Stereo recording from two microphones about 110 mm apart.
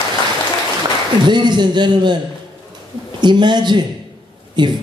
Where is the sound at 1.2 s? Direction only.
45° right (ahead or behind).